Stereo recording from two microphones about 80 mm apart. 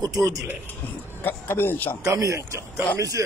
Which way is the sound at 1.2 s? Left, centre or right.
Left.